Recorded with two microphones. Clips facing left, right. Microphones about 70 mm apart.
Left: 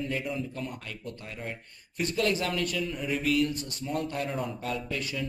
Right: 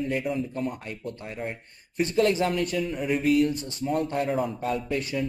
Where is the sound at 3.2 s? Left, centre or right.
Right.